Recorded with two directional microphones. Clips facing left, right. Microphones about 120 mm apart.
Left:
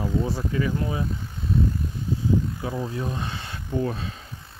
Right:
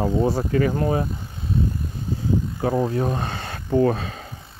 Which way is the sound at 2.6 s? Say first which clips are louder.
Right 8 dB; 55° right (ahead or behind).